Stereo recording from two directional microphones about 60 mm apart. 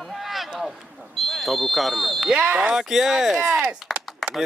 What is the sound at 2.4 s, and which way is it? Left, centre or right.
Speech, right.